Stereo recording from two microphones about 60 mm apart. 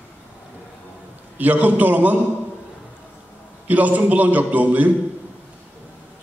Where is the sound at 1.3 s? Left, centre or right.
Right.